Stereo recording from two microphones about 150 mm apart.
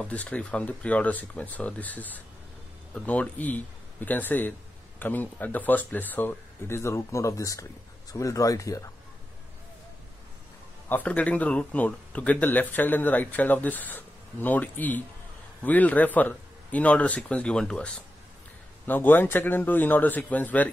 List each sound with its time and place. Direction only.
0.0 s a man's voice: 10° left (ahead or behind)
10.9 s a man's voice: 10° left (ahead or behind)